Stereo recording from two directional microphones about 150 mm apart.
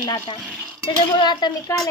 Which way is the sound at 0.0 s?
20° left (ahead or behind).